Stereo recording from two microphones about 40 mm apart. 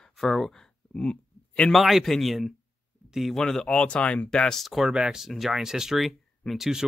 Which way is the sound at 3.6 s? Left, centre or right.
Left.